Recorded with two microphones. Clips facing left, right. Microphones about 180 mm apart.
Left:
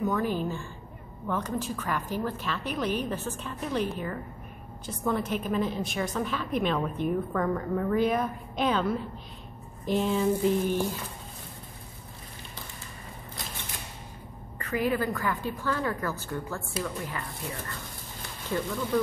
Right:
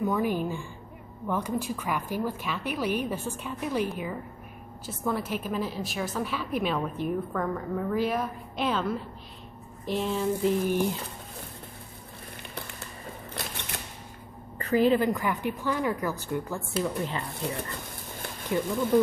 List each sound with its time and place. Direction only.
0.0 s a woman's voice: 10° right (ahead or behind)
13.3 s a sound: 65° right (ahead or behind)
14.6 s a woman's voice: 30° right (ahead or behind)
17.4 s speech: 70° right (ahead or behind)